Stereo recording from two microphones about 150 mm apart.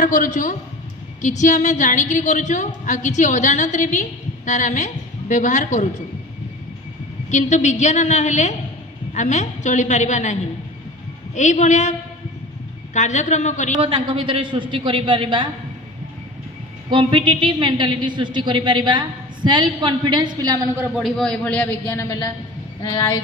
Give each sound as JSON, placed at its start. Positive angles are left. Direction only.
{"t": 0.0, "sound": "a woman's voice", "side_deg": 60}
{"t": 7.2, "sound": "a woman's voice", "side_deg": 55}
{"t": 12.9, "sound": "a woman's voice", "side_deg": 55}
{"t": 13.7, "sound": "a woman's voice", "side_deg": -40}
{"t": 16.9, "sound": "a woman's voice", "side_deg": -35}
{"t": 21.0, "sound": "a man's voice", "side_deg": 5}
{"t": 22.8, "sound": "a sound", "side_deg": 20}